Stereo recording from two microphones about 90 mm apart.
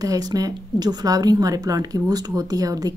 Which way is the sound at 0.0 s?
45° right (ahead or behind).